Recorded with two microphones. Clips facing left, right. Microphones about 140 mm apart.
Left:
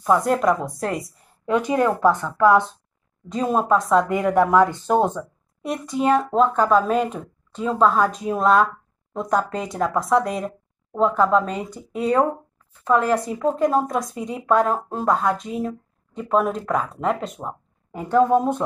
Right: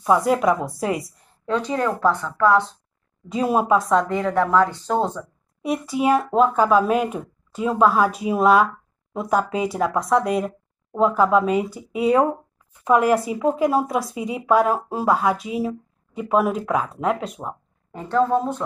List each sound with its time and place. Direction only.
0.0 s speech: centre (ahead or behind)
1.4 s a woman's voice: 15° left (ahead or behind)
3.3 s speech: 5° right (ahead or behind)
4.1 s a woman's voice: 15° left (ahead or behind)
5.6 s speech: centre (ahead or behind)
17.9 s a woman's voice: 10° left (ahead or behind)